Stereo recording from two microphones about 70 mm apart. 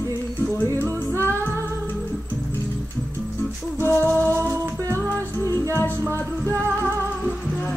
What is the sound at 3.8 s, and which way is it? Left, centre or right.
Music, left.